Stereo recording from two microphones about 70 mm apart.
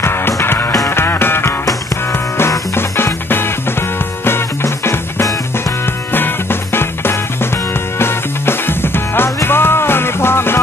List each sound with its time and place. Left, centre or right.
0.0 s music: left
2.7 s music: left
6.1 s music: left